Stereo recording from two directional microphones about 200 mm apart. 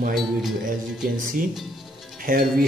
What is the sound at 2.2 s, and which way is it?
Speech, 45° right (ahead or behind).